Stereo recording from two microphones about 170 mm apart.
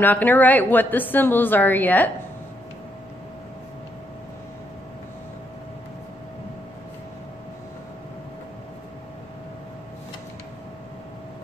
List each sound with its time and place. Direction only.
0.0 s a woman's voice: 10° left (ahead or behind)